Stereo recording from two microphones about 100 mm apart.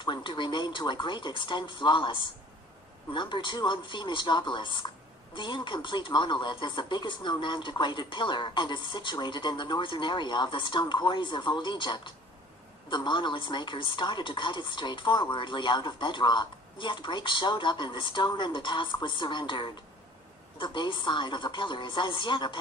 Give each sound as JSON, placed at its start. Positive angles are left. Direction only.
{"t": 0.0, "sound": "speech", "side_deg": 50}